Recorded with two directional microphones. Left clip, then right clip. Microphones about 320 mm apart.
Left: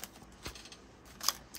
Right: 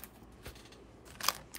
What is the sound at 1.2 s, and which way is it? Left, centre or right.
Camera, right.